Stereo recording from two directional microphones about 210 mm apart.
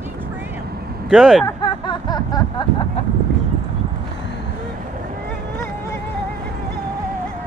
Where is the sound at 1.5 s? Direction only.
20° left (ahead or behind).